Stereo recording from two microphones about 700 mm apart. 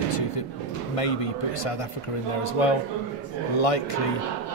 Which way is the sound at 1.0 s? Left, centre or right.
Left.